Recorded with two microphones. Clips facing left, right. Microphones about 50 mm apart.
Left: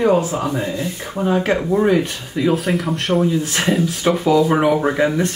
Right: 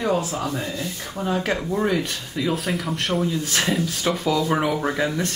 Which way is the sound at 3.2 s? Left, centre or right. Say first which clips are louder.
Left 5 dB; centre.